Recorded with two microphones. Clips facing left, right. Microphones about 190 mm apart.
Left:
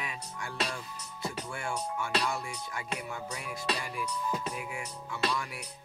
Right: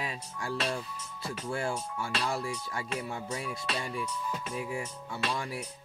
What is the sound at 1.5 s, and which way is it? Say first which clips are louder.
Speech: right 6 dB; 30° right (ahead or behind).